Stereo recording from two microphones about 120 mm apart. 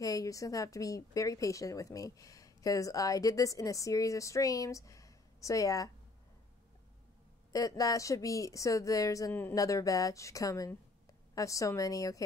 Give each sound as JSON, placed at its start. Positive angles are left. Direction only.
{"t": 0.0, "sound": "speech", "side_deg": 30}
{"t": 7.5, "sound": "speech", "side_deg": 30}
{"t": 9.3, "sound": "speech", "side_deg": 15}
{"t": 9.6, "sound": "speech", "side_deg": 30}